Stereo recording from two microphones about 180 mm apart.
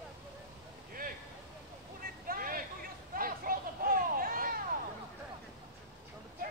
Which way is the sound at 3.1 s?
55° right (ahead or behind).